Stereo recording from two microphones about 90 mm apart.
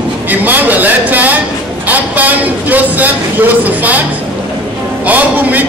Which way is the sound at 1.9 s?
20° right (ahead or behind).